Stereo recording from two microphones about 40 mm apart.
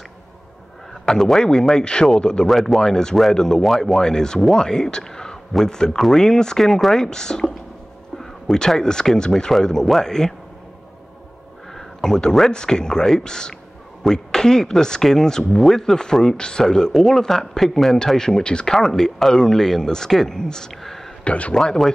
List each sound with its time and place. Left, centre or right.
1.0 s speech: centre
2.4 s speech: centre
4.0 s speech: centre
4.6 s speech: centre
11.7 s speech: centre
18.9 s speech: centre
21.2 s speech: left